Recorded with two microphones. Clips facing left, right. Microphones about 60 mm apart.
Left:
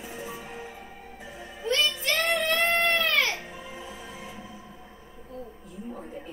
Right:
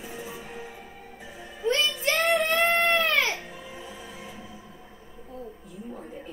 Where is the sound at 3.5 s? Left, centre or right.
Centre.